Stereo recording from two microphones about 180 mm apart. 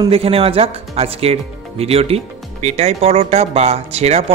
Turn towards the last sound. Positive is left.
turn(degrees=-35)  # may be behind; listen again after turning